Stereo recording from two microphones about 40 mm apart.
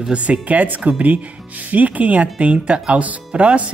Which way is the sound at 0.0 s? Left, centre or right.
Right.